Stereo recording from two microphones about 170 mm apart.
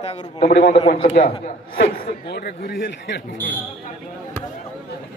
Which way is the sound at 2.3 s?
65° left (ahead or behind).